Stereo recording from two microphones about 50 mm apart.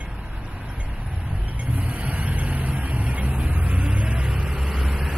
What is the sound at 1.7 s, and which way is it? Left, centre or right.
Vehicle, right.